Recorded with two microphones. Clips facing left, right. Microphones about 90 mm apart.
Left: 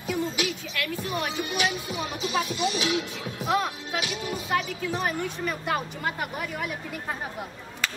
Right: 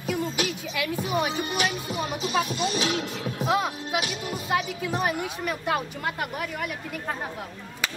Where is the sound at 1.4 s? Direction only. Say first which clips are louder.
Right 1 dB; 35° right (ahead or behind).